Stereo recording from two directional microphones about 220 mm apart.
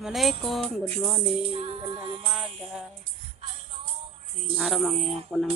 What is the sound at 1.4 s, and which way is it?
Music, 25° right (ahead or behind).